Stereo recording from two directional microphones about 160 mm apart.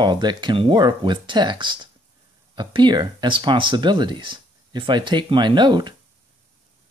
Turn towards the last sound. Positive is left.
turn(degrees=-30)  # may be behind; listen again after turning